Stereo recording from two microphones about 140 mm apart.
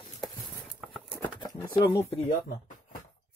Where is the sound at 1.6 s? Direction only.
20° left (ahead or behind).